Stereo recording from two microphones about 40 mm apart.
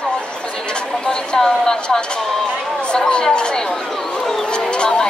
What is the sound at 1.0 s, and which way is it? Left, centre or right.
Speech, centre.